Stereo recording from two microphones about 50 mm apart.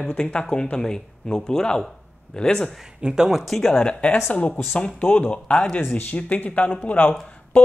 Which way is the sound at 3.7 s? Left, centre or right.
Left.